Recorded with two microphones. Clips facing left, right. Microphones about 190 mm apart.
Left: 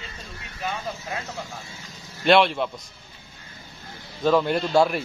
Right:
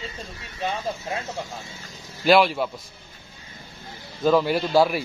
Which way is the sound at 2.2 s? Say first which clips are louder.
Even; centre (ahead or behind).